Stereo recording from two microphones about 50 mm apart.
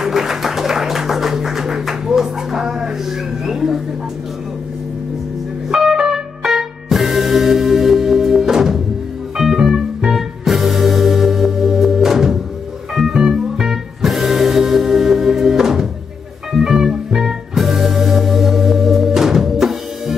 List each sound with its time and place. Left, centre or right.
0.0 s music: centre
5.7 s music: centre